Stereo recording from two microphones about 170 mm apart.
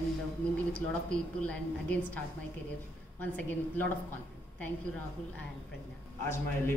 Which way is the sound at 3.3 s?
10° left (ahead or behind).